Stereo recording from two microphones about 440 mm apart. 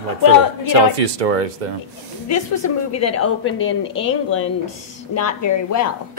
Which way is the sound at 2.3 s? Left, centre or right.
Left.